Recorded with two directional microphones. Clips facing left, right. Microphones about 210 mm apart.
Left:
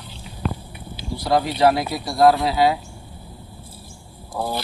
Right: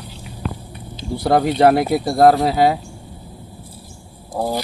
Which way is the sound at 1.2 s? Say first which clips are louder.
Right 4 dB; 55° right (ahead or behind).